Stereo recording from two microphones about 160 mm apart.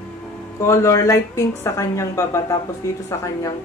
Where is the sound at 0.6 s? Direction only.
15° left (ahead or behind).